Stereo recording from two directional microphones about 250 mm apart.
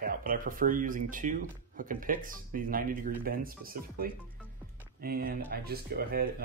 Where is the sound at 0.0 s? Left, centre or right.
Right.